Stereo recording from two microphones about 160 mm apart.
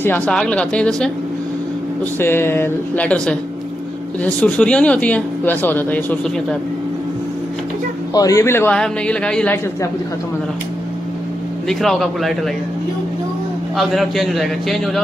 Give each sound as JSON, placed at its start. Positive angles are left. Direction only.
{"t": 0.0, "sound": "speech", "side_deg": 10}
{"t": 2.1, "sound": "speech", "side_deg": 15}
{"t": 8.1, "sound": "speech", "side_deg": 20}
{"t": 11.8, "sound": "speech", "side_deg": 0}
{"t": 13.7, "sound": "speech", "side_deg": 0}